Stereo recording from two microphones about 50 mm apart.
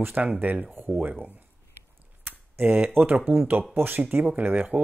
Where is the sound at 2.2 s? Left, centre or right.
Right.